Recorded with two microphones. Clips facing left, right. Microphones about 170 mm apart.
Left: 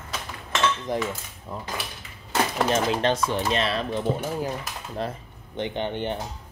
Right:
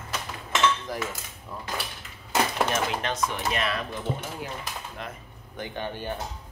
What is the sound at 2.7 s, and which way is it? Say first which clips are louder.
Cutlery: left 6 dB; 30° left (ahead or behind).